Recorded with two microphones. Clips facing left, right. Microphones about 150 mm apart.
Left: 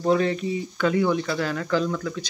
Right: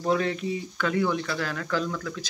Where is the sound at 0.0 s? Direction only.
Centre (ahead or behind).